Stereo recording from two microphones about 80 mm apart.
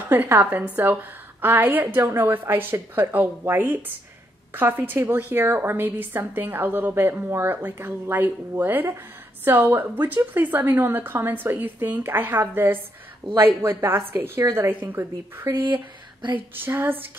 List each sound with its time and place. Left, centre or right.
0.1 s a woman's voice: right
15.6 s speech: right
16.3 s a woman's voice: right